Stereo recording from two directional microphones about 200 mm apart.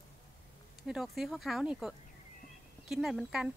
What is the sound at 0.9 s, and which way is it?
Speech, centre (ahead or behind).